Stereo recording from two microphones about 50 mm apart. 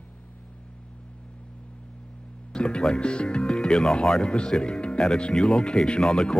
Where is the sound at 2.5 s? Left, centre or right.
Centre.